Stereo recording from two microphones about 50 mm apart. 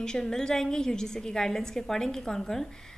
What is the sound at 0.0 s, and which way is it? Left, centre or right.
A woman's voice, centre.